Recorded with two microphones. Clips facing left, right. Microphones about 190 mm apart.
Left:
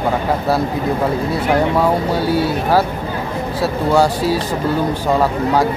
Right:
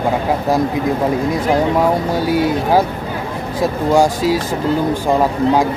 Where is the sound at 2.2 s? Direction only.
15° right (ahead or behind).